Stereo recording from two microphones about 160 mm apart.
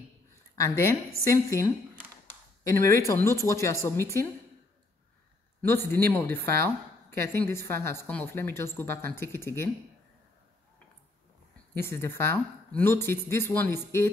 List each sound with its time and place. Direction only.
0.6 s speech: 15° left (ahead or behind)
5.6 s speech: 15° left (ahead or behind)
11.7 s speech: 15° left (ahead or behind)